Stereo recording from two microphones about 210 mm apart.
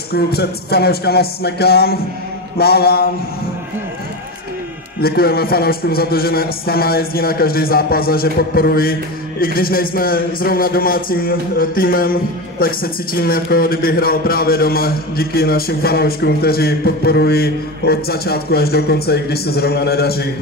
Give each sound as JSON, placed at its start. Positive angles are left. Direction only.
{"t": 0.1, "sound": "a man's voice", "side_deg": 50}
{"t": 5.0, "sound": "a man's voice", "side_deg": 45}